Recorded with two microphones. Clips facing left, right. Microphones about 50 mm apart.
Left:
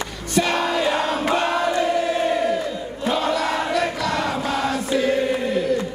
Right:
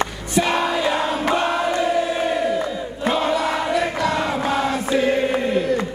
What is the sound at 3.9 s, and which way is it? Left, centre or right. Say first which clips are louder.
Choir: right 2 dB; right.